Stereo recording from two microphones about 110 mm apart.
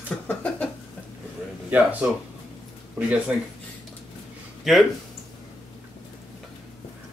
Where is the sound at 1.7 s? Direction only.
15° right (ahead or behind).